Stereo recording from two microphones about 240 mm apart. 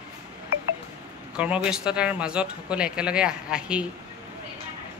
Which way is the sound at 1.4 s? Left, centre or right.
Centre.